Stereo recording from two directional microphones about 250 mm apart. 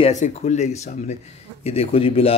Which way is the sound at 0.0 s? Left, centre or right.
Left.